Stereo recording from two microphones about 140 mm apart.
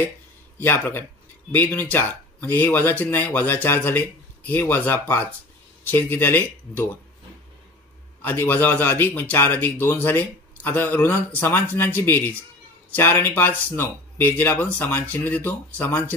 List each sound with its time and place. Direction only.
0.6 s speech: 15° left (ahead or behind)
8.2 s speech: 15° left (ahead or behind)